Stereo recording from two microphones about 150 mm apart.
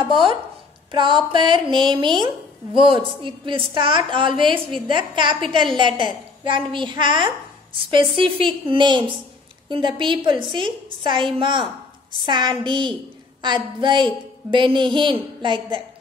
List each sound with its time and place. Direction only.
0.9 s a woman's voice: 35° right (ahead or behind)